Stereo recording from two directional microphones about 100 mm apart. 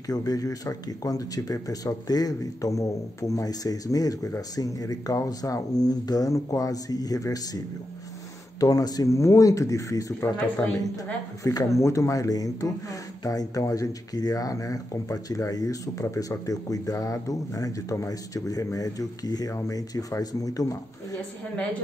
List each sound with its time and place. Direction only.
0.1 s speech: 35° left (ahead or behind)
8.5 s speech: 35° left (ahead or behind)
11.4 s speech: 30° left (ahead or behind)